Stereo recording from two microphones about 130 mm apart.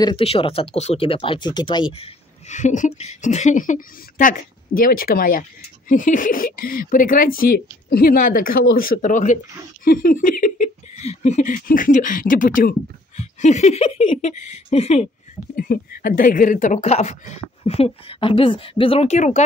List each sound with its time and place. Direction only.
0.0 s speech: 45° left (ahead or behind); by 9.4 s 80° left
9.8 s speech: 90° left
13.1 s speech: 60° left (ahead or behind)
15.6 s speech: 90° left; by 19.4 s 65° left (ahead or behind)